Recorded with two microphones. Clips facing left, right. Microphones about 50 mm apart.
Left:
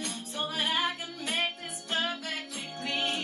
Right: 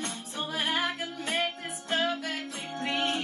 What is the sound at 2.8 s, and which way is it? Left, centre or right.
Music, right.